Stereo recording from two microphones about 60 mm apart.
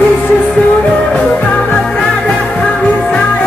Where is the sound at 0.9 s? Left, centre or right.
Centre.